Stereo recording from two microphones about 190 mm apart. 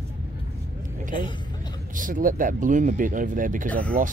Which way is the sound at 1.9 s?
45° right (ahead or behind).